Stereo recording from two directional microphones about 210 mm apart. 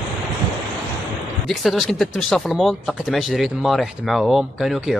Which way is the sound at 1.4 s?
Centre (ahead or behind).